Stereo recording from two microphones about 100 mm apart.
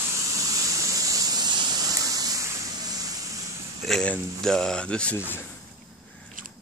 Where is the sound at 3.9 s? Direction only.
5° left (ahead or behind).